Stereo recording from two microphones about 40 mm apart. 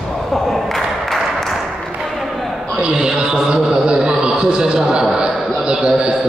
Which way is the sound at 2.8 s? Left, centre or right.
Right.